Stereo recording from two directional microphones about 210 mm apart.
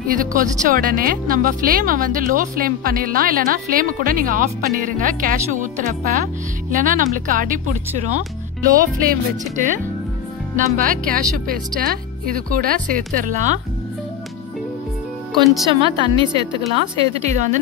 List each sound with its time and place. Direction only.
0.0 s speech: 40° right (ahead or behind)
15.8 s a woman's voice: 25° right (ahead or behind)